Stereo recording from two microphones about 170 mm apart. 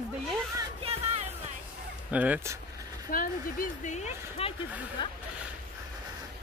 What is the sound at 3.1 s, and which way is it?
Speech, 55° left (ahead or behind).